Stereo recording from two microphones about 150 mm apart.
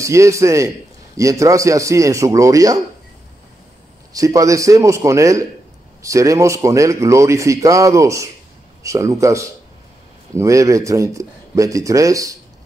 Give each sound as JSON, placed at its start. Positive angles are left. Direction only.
{"t": 0.0, "sound": "a man's voice", "side_deg": -20}
{"t": 4.1, "sound": "a man's voice", "side_deg": -25}